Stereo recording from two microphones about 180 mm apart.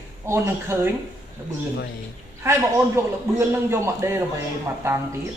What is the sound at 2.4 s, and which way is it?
A man's voice, 15° right (ahead or behind).